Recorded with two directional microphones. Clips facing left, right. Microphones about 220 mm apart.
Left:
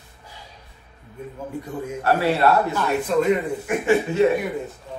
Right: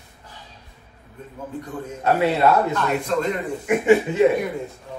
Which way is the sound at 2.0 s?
20° right (ahead or behind).